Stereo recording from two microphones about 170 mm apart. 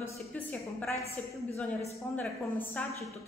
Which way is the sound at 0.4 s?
10° left (ahead or behind).